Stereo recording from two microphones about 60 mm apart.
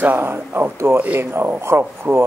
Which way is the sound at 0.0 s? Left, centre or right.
Right.